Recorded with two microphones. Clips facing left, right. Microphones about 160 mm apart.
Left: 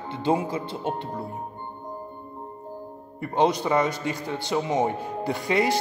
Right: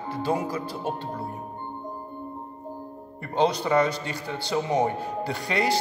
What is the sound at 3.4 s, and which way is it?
A man's voice, 15° left (ahead or behind).